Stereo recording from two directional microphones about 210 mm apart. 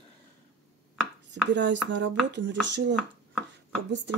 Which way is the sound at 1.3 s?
55° right (ahead or behind).